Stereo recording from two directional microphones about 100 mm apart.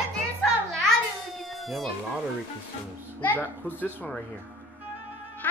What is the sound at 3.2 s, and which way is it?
A child's voice, 20° left (ahead or behind).